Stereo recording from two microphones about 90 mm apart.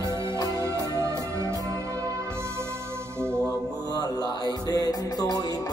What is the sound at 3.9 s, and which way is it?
Music, 50° left (ahead or behind).